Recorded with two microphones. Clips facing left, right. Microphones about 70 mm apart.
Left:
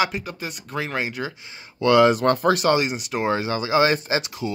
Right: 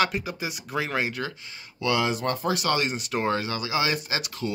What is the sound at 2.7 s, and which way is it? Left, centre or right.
Speech, centre.